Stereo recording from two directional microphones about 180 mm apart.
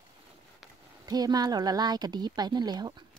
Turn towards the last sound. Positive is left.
turn(degrees=-25)  # may be behind; listen again after turning